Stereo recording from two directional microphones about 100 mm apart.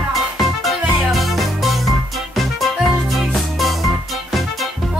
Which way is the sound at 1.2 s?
Centre (ahead or behind).